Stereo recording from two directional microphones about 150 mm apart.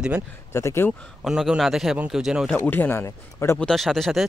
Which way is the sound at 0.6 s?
15° left (ahead or behind).